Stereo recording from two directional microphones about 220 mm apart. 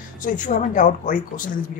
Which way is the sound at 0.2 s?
35° left (ahead or behind).